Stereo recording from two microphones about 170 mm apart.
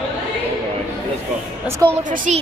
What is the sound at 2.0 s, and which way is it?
Speech, 45° right (ahead or behind).